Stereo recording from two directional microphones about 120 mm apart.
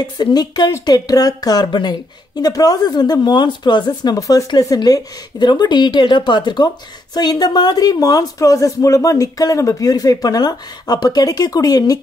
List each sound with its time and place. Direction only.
0.0 s speech: 35° left (ahead or behind)